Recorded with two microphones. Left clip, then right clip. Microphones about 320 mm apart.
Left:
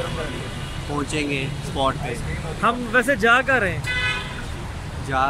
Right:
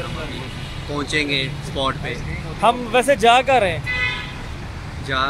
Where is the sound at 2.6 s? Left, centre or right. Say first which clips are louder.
Right 3 dB; centre.